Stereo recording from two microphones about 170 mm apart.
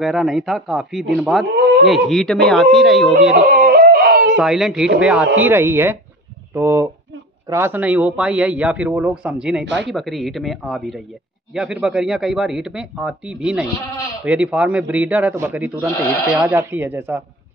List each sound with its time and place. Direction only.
0.0 s a man's voice: centre (ahead or behind)
1.4 s speech: 90° right
2.0 s a man's voice: centre (ahead or behind)
3.4 s a sound: 60° right (ahead or behind)
4.4 s a man's voice: centre (ahead or behind)